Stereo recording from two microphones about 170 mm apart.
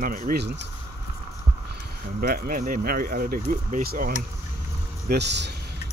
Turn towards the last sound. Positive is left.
turn(degrees=-85)